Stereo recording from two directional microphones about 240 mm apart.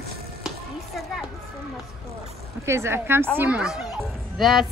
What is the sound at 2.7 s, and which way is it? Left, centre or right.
A woman's voice, centre.